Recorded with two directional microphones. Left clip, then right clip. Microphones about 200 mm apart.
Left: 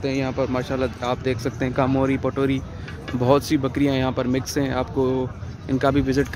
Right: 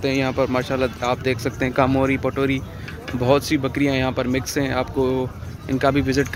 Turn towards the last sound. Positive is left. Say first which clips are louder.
# right 1 dB
turn(degrees=15)  # may be behind; listen again after turning